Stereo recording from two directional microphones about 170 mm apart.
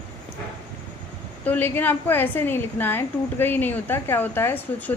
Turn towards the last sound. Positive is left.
turn(degrees=10)  # may be behind; listen again after turning